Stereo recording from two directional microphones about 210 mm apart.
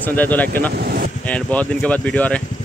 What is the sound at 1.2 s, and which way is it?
Speech, 5° left (ahead or behind).